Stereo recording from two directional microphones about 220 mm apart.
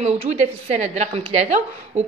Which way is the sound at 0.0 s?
30° right (ahead or behind).